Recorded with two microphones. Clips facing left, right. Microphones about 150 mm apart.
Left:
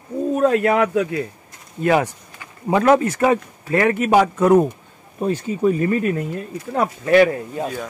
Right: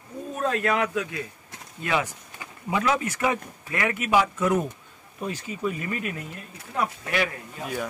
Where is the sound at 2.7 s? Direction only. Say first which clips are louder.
Left 10 dB; 45° left (ahead or behind).